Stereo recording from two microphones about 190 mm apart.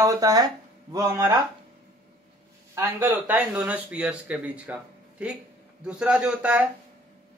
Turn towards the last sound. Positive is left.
turn(degrees=-5)  # may be behind; listen again after turning